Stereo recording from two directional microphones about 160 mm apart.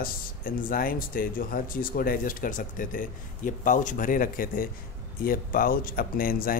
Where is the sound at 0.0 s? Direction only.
60° left (ahead or behind).